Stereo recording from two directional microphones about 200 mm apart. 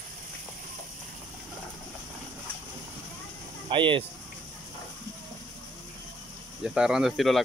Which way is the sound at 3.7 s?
25° right (ahead or behind).